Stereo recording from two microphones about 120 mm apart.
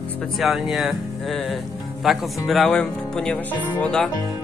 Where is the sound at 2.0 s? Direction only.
Centre (ahead or behind).